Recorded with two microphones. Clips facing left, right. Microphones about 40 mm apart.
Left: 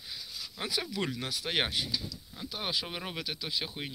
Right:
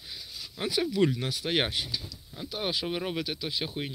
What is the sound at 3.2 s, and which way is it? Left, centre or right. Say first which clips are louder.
Speech: right 3 dB; centre.